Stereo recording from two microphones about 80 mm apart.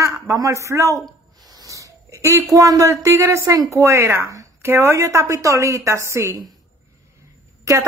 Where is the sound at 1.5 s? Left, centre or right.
Right.